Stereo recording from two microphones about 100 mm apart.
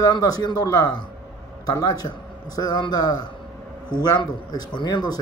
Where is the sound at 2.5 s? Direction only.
45° left (ahead or behind).